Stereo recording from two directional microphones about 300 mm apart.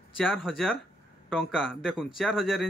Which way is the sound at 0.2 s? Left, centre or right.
Centre.